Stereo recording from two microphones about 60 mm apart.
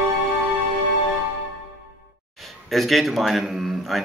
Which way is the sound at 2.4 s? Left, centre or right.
Centre.